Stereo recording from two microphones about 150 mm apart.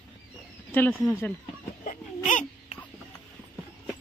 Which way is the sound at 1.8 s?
60° left (ahead or behind).